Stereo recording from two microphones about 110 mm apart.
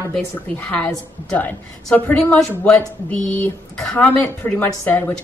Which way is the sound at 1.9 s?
15° left (ahead or behind).